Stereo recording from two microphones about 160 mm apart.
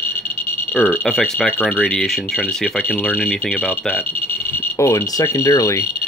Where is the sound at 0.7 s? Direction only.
Centre (ahead or behind).